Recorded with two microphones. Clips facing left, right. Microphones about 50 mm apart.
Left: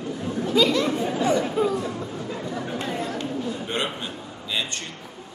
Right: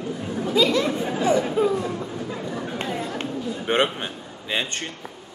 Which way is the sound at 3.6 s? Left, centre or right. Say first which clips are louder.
Right 6 dB; right.